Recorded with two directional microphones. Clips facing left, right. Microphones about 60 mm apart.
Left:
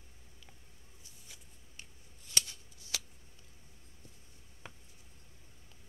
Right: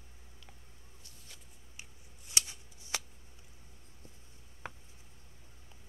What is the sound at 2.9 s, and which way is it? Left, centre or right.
Scissors, right.